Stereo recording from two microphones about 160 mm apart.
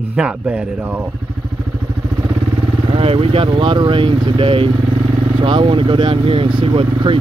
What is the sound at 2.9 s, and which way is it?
Speech, 35° right (ahead or behind).